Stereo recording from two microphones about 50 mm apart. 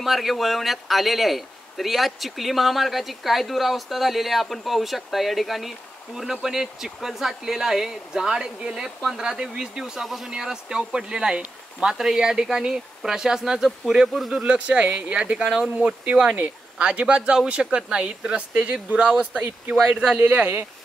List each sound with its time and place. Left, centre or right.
0.0 s a man's voice: centre
10.0 s a man's voice: centre
10.3 s speech: centre
14.3 s speech: right
15.5 s speech: centre
16.1 s speech: right
20.2 s speech: right